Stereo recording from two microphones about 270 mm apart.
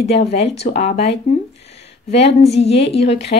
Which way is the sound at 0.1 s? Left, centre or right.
Left.